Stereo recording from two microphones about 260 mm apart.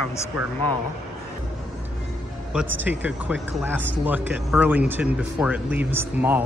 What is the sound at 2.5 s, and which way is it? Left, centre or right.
Speech, centre.